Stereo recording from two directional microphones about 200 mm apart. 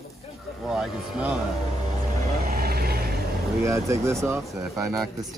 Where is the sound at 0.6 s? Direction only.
Centre (ahead or behind).